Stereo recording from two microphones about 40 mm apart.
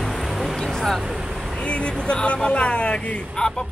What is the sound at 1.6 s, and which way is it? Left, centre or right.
Speech, left.